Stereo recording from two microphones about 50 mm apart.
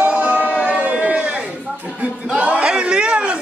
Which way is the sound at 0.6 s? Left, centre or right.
Right.